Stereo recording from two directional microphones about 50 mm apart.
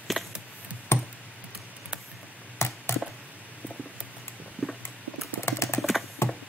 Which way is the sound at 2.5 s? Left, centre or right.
Left.